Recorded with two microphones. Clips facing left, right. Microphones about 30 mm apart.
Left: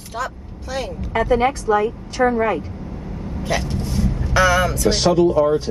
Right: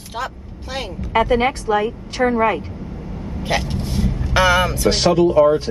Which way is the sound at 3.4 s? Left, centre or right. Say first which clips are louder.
Right 1 dB; right.